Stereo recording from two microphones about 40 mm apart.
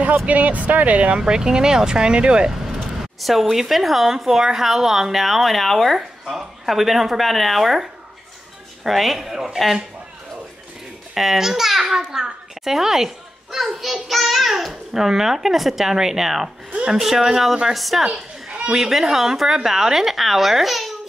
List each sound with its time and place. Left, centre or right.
0.3 s speech: right
1.1 s speech: centre
2.5 s vehicle: centre
3.2 s a child's voice: centre
11.1 s a child's voice: centre
18.0 s children playing: right
18.7 s a child's voice: centre